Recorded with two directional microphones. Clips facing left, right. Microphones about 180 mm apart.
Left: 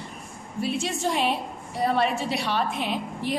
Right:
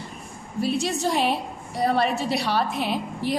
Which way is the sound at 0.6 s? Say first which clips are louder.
Right 3 dB; 35° right (ahead or behind).